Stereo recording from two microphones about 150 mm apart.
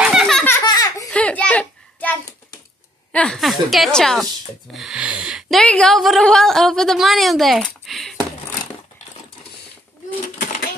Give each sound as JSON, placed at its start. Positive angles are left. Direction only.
{"t": 0.0, "sound": "baby laughter", "side_deg": 0}
{"t": 0.7, "sound": "baby laughter", "side_deg": 25}
{"t": 1.1, "sound": "a sound", "side_deg": 10}
{"t": 3.1, "sound": "a woman's voice", "side_deg": 5}